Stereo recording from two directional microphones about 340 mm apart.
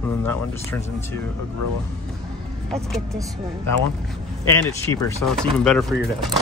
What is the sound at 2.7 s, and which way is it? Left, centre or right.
Speech, centre.